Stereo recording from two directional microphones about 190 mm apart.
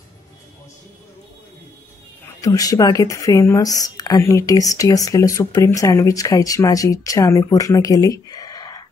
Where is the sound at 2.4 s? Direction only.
20° left (ahead or behind).